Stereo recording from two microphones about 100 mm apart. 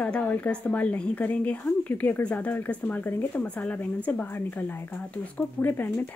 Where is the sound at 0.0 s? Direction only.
15° left (ahead or behind).